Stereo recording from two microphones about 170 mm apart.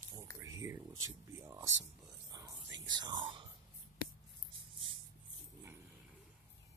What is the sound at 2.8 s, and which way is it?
Speech, 25° right (ahead or behind).